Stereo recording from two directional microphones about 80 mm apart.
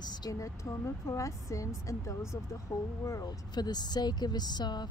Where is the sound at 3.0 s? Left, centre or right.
Left.